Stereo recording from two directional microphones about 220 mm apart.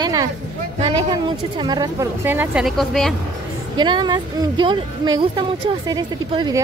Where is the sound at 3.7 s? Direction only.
20° right (ahead or behind).